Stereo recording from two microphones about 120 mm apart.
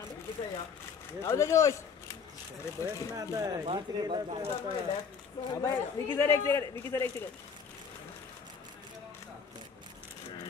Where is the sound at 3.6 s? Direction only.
50° right (ahead or behind).